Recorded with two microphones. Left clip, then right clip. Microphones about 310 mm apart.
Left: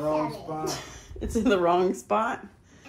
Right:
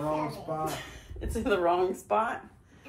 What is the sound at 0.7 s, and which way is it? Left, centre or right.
Speech, centre.